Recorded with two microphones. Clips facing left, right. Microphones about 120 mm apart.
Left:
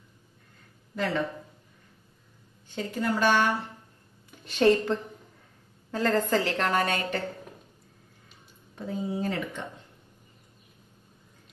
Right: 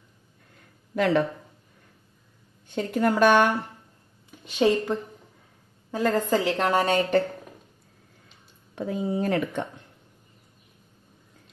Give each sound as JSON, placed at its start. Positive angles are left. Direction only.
{"t": 0.9, "sound": "speech", "side_deg": -60}
{"t": 2.7, "sound": "speech", "side_deg": -55}
{"t": 4.5, "sound": "a woman's voice", "side_deg": -10}
{"t": 6.9, "sound": "a woman's voice", "side_deg": -45}
{"t": 8.7, "sound": "speech", "side_deg": -70}